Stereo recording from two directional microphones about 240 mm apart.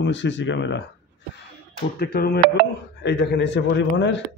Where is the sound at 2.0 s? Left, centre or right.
Left.